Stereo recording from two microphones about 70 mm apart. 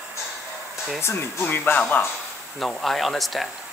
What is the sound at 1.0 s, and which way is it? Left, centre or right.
Speech, left.